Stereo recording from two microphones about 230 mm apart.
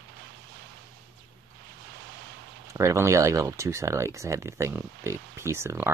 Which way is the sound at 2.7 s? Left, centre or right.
Centre.